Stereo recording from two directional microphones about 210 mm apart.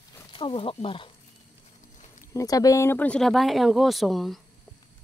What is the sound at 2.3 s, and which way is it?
Speech, 15° left (ahead or behind).